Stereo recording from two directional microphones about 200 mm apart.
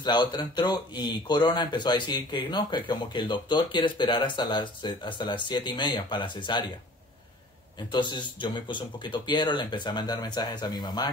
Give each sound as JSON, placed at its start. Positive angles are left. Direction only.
{"t": 0.0, "sound": "speech", "side_deg": 20}
{"t": 7.9, "sound": "speech", "side_deg": 25}